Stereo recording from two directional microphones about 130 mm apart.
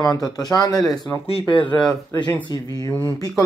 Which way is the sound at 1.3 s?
45° left (ahead or behind).